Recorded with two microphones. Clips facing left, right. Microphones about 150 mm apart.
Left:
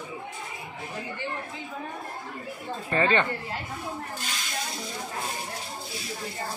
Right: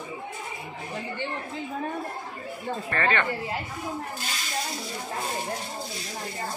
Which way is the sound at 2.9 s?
20° left (ahead or behind).